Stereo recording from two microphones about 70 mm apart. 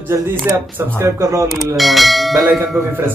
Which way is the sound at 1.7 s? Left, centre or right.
Centre.